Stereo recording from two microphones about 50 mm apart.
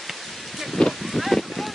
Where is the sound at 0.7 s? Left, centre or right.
Centre.